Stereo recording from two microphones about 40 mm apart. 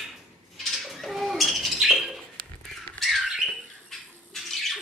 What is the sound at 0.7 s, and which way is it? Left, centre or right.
Bird, centre.